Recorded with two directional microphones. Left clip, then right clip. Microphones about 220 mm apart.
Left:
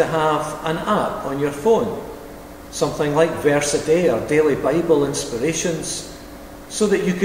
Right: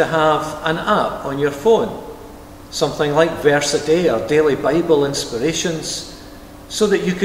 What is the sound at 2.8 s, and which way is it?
A man's voice, 20° right (ahead or behind).